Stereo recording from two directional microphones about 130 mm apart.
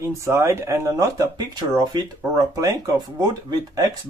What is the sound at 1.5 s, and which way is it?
Speech, 35° right (ahead or behind).